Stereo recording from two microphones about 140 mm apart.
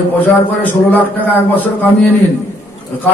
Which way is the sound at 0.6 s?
15° left (ahead or behind).